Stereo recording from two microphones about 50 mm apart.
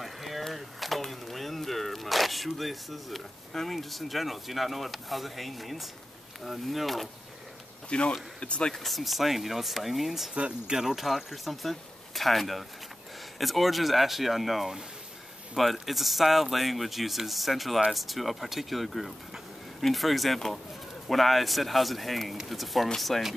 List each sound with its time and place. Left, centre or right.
0.0 s a sound: centre
6.4 s speech: centre
7.9 s speech: left
8.7 s speech: centre
10.3 s speech: right
10.8 s speech: centre